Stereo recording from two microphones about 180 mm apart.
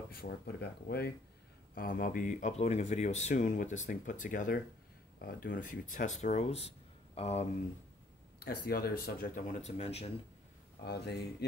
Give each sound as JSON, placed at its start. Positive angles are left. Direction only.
{"t": 0.2, "sound": "speech", "side_deg": 60}
{"t": 8.5, "sound": "speech", "side_deg": 60}
{"t": 10.8, "sound": "speech", "side_deg": 65}